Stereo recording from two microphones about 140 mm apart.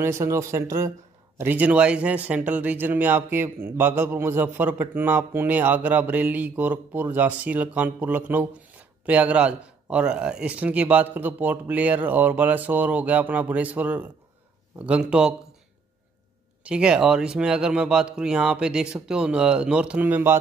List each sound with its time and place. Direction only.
0.0 s speech: 20° right (ahead or behind)
16.6 s speech: 5° right (ahead or behind)